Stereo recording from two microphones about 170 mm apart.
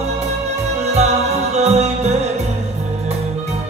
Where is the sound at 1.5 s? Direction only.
40° right (ahead or behind).